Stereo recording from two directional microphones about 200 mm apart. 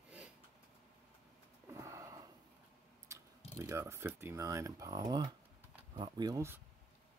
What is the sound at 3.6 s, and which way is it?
Speech, 15° right (ahead or behind).